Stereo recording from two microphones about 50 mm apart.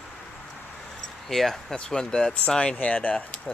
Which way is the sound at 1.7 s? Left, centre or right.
Centre.